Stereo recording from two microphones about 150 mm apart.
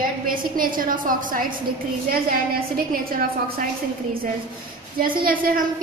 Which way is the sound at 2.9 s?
80° right.